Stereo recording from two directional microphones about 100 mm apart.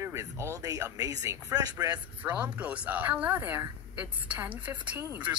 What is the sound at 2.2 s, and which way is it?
A woman's voice, 15° right (ahead or behind).